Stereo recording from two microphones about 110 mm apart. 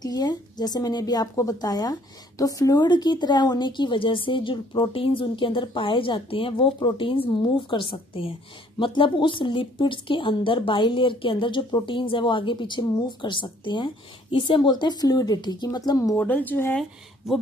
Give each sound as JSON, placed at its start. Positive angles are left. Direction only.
{"t": 0.0, "sound": "a woman's voice", "side_deg": 40}
{"t": 16.2, "sound": "speech", "side_deg": 15}